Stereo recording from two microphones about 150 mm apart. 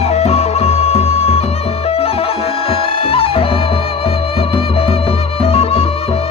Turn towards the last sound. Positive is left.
turn(degrees=40)  # may be behind; listen again after turning